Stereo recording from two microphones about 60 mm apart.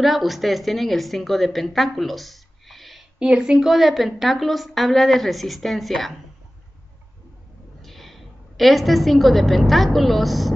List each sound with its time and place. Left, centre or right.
0.0 s a woman's voice: centre
3.2 s a woman's voice: centre
7.8 s a woman's voice: centre